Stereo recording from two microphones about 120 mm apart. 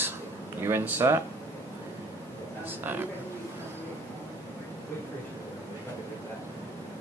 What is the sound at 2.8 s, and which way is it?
Speech, 15° right (ahead or behind).